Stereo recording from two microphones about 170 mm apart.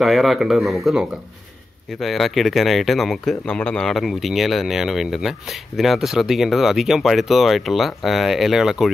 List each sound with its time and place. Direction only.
0.0 s speech: centre (ahead or behind)